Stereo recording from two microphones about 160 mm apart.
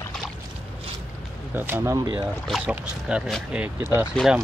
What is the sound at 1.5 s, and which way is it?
Speech, 15° right (ahead or behind).